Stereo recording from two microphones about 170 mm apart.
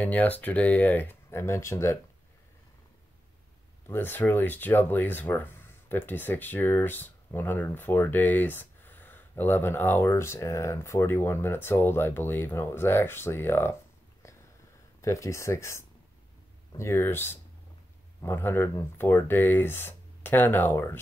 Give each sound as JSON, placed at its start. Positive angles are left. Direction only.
{"t": 0.0, "sound": "speech", "side_deg": 10}
{"t": 3.8, "sound": "speech", "side_deg": 10}
{"t": 15.0, "sound": "speech", "side_deg": 15}